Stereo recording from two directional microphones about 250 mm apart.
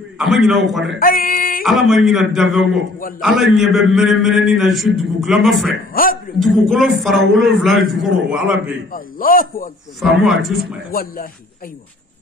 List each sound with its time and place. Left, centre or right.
0.2 s a man's voice: centre
0.9 s a man's voice: left
1.6 s a man's voice: centre
5.9 s a man's voice: left
6.4 s a man's voice: centre
8.9 s a man's voice: left
10.2 s a man's voice: centre
10.9 s a man's voice: left